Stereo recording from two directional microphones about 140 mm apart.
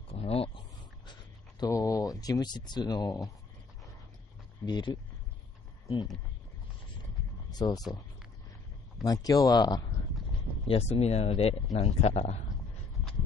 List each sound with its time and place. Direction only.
0.1 s a sound: 45° left (ahead or behind)
1.6 s speech: 25° left (ahead or behind)
4.6 s speech: 35° left (ahead or behind)
7.5 s speech: 25° left (ahead or behind)
9.0 s speech: 25° left (ahead or behind)
10.7 s speech: 50° left (ahead or behind)